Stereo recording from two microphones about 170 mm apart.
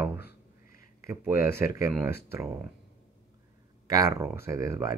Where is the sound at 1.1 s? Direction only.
15° right (ahead or behind).